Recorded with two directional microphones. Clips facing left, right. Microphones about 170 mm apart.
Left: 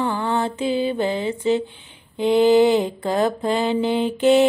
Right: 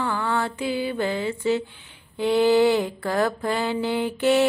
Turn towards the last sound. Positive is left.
turn(degrees=20)  # may be behind; listen again after turning